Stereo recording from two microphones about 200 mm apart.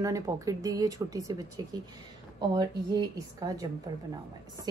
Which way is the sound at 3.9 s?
20° right (ahead or behind).